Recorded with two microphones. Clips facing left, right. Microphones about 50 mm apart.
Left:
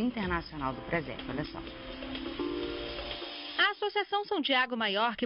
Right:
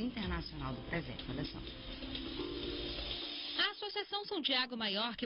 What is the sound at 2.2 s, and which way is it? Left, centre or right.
Music, left.